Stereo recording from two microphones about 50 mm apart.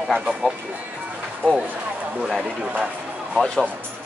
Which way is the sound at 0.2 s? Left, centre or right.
Centre.